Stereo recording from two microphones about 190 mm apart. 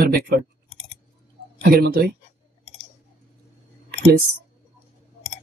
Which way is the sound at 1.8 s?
50° right (ahead or behind).